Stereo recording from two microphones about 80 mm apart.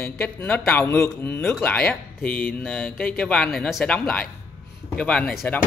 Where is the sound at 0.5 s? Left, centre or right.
Centre.